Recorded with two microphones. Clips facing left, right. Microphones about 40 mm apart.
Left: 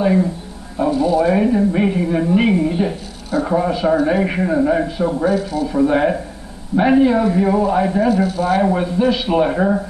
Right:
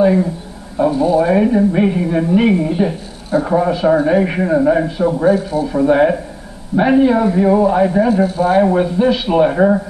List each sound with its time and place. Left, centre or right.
0.0 s speech: centre
0.9 s speech: centre
5.3 s speech: centre
5.7 s speech: centre
8.1 s speech: centre
8.5 s speech: centre